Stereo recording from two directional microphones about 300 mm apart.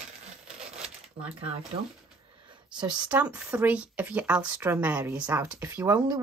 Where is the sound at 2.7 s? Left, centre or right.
Centre.